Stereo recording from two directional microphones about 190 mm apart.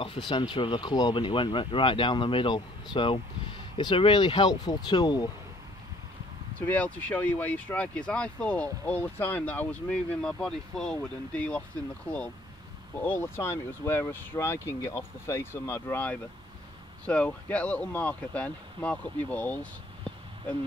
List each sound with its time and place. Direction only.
0.0 s speech: 25° left (ahead or behind)
6.7 s speech: 10° left (ahead or behind)
12.9 s speech: 10° left (ahead or behind)